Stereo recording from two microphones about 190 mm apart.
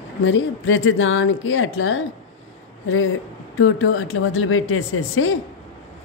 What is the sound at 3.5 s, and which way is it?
Speech, 90° left.